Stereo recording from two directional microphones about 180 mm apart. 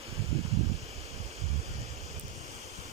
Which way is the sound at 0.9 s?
35° right (ahead or behind).